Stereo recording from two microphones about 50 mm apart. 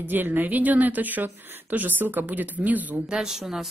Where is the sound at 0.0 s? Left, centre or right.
Right.